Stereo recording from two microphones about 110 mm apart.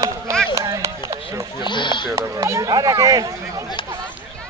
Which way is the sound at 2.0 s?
25° right (ahead or behind).